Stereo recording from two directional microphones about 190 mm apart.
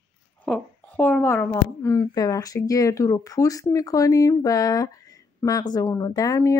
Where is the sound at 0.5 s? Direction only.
10° left (ahead or behind).